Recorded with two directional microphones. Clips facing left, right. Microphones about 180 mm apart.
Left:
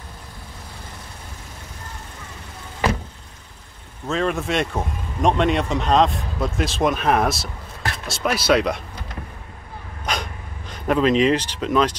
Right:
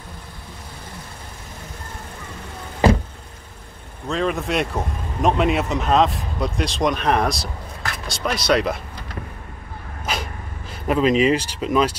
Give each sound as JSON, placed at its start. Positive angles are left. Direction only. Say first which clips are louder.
{"t": 4.1, "sound": "speech", "louder": "even", "side_deg": 0}
{"t": 10.1, "sound": "sneeze", "louder": "even", "side_deg": -5}
{"t": 10.7, "sound": "speech", "louder": "even", "side_deg": -5}